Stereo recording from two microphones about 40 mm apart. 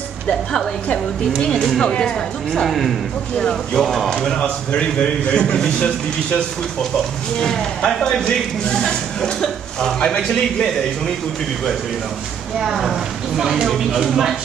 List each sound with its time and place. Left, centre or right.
1.4 s speech: centre
1.9 s a man's voice: left
2.6 s speech: centre
3.3 s speech: centre
3.8 s speech: centre
4.4 s a man's voice: left
7.4 s speech: centre
12.5 s speech: centre